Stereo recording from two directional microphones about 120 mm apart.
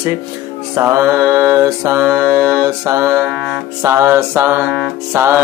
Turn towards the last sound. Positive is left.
turn(degrees=-20)  # may be behind; listen again after turning